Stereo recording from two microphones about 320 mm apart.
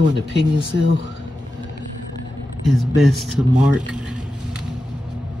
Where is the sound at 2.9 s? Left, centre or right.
Centre.